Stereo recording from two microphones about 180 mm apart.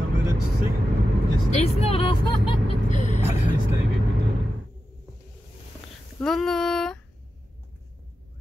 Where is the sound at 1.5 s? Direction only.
30° left (ahead or behind).